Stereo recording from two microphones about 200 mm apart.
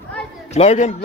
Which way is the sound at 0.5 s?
35° left (ahead or behind).